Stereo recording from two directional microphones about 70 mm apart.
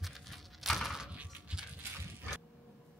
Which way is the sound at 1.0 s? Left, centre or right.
Centre.